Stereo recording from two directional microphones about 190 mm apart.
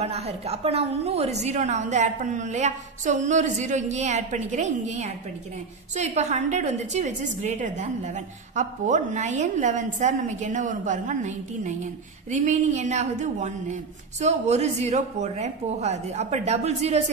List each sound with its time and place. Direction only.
0.0 s a woman's voice: 35° right (ahead or behind)